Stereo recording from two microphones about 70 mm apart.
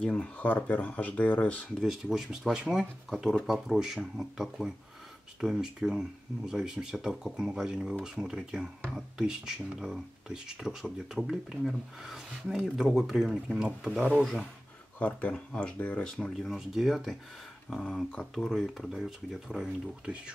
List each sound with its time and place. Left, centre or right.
0.0 s speech: centre
0.4 s speech: left
1.8 s speech: centre
15.0 s speech: left
16.3 s speech: centre
17.6 s speech: centre
18.3 s speech: centre